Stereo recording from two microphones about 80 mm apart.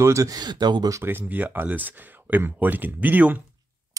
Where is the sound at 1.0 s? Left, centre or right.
Right.